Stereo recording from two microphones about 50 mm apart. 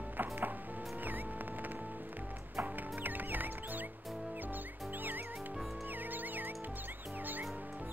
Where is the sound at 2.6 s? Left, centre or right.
Right.